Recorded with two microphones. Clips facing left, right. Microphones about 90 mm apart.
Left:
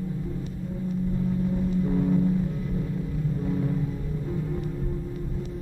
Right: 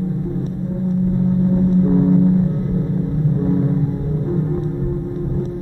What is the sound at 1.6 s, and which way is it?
Gong, 35° right (ahead or behind).